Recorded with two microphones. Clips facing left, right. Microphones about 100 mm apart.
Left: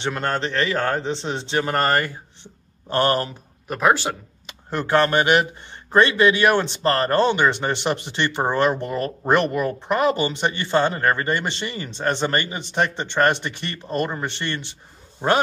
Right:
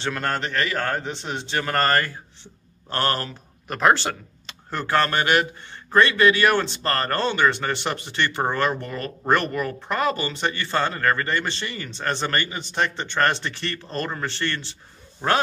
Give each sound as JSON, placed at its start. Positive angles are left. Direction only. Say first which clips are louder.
{"t": 0.0, "sound": "speech", "louder": "left 2 dB", "side_deg": 25}
{"t": 3.6, "sound": "speech", "louder": "even", "side_deg": 5}